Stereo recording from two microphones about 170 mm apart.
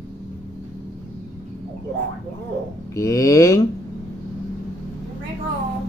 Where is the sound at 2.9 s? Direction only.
20° left (ahead or behind).